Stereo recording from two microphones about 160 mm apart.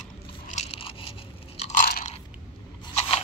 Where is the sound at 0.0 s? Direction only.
45° left (ahead or behind).